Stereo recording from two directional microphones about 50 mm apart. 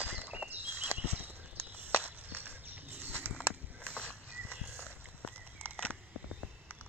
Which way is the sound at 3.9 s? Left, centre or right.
Right.